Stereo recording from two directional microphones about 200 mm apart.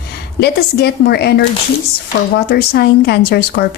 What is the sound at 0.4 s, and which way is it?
A woman's voice, 55° left (ahead or behind).